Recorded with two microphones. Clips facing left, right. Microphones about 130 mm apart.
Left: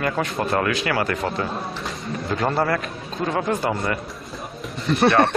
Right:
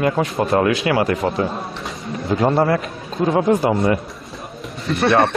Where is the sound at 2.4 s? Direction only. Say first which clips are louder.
Right 5 dB; 25° right (ahead or behind).